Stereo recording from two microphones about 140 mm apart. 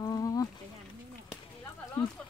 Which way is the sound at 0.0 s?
25° left (ahead or behind).